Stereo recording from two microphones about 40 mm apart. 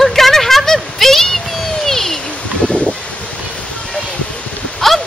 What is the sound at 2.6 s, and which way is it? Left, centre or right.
Rustling leaves, left.